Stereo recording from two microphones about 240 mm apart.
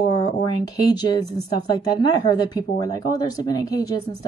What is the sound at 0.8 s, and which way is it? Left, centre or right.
Speech, centre.